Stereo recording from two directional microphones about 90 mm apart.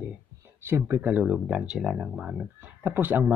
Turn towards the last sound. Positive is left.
turn(degrees=-20)  # may be behind; listen again after turning